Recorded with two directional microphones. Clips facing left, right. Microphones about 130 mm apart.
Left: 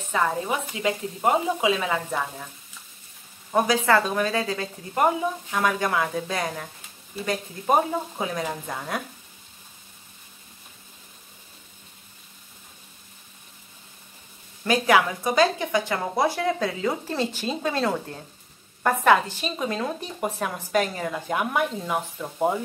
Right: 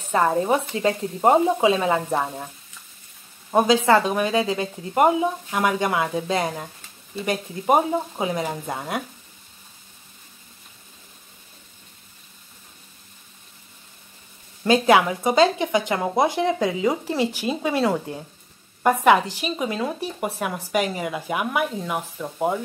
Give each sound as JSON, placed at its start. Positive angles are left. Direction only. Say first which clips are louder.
{"t": 0.1, "sound": "speech", "louder": "right 5 dB", "side_deg": -30}
{"t": 3.5, "sound": "speech", "louder": "right 3 dB", "side_deg": -20}
{"t": 14.6, "sound": "speech", "louder": "right 3 dB", "side_deg": -20}